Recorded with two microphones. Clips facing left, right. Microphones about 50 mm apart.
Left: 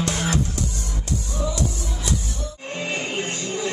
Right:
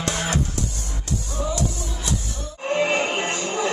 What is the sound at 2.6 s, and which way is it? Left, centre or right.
Music, right.